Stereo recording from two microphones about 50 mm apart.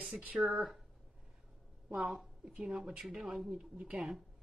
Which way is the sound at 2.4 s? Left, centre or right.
Centre.